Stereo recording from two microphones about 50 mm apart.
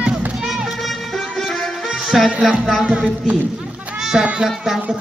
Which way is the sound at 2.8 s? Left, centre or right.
Centre.